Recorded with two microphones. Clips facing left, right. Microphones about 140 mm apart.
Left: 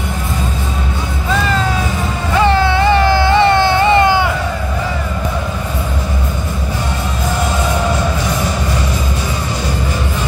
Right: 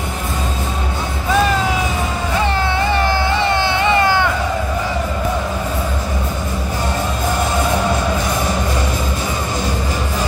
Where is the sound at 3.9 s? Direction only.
15° left (ahead or behind).